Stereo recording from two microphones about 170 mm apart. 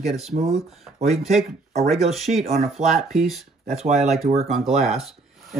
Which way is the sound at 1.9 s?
Centre (ahead or behind).